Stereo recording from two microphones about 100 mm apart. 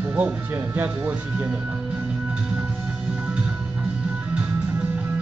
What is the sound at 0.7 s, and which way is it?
Speech, 20° right (ahead or behind).